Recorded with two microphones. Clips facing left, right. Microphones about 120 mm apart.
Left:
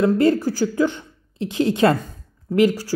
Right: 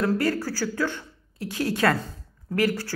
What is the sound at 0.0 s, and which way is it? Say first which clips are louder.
Speech: left 7 dB; 20° left (ahead or behind).